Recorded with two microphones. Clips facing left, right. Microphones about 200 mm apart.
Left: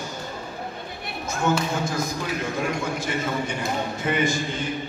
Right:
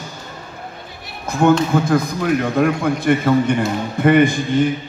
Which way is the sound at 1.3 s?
55° right (ahead or behind).